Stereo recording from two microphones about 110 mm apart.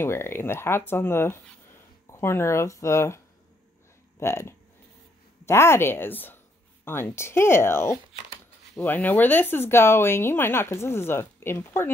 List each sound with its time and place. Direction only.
0.0 s speech: 20° left (ahead or behind)
4.2 s speech: 25° left (ahead or behind)